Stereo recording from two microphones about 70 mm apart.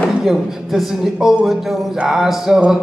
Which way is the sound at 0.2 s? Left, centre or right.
Centre.